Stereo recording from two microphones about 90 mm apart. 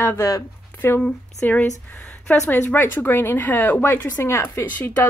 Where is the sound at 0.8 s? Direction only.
30° left (ahead or behind).